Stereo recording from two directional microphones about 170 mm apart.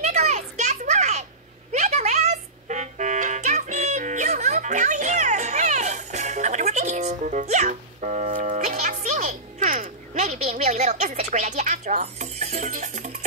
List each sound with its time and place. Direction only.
0.0 s children playing: 40° right (ahead or behind)
1.7 s music: 45° right (ahead or behind)